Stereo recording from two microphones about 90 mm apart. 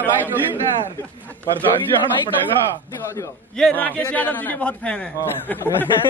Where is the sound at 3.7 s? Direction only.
20° left (ahead or behind).